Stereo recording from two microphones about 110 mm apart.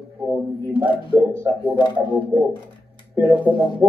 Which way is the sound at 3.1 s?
15° right (ahead or behind).